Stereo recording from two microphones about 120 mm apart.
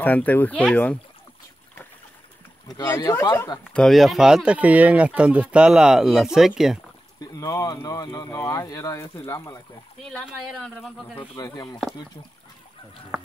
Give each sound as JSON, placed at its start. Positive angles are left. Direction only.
{"t": 0.0, "sound": "speech", "side_deg": 15}
{"t": 3.0, "sound": "speech", "side_deg": 30}
{"t": 3.7, "sound": "speech", "side_deg": 0}
{"t": 7.2, "sound": "speech", "side_deg": 30}
{"t": 10.2, "sound": "speech", "side_deg": -5}
{"t": 11.3, "sound": "speech", "side_deg": 35}